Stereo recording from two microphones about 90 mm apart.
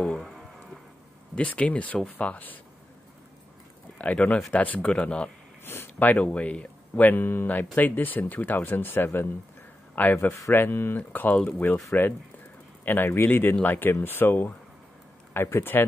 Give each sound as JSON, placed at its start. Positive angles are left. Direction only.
{"t": 0.0, "sound": "a sound", "side_deg": 5}
{"t": 1.3, "sound": "speech", "side_deg": 15}
{"t": 4.0, "sound": "speech", "side_deg": 15}
{"t": 5.7, "sound": "speech", "side_deg": 25}
{"t": 12.8, "sound": "speech", "side_deg": 25}